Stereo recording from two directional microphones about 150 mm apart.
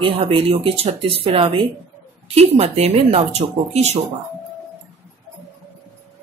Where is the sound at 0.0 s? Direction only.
40° right (ahead or behind).